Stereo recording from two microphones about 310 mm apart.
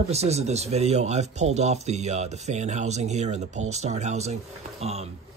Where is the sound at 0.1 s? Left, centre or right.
Right.